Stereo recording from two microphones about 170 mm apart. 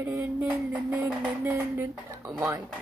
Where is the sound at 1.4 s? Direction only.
15° right (ahead or behind).